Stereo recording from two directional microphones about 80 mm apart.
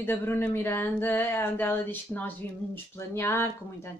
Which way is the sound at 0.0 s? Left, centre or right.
Left.